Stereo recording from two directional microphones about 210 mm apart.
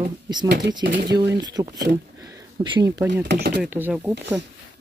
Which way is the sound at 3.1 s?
55° right (ahead or behind).